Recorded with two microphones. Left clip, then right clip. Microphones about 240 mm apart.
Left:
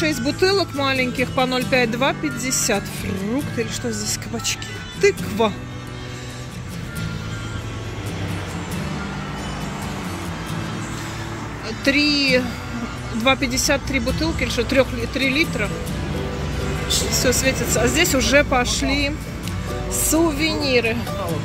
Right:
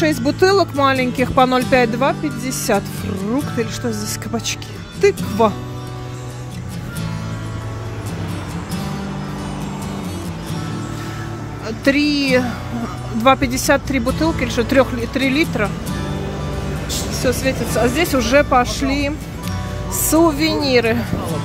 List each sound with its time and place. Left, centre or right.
0.0 s speech: centre
11.6 s speech: centre
17.1 s speech: centre